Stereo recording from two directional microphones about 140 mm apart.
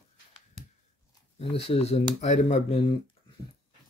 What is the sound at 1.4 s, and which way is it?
Speech, 45° left (ahead or behind).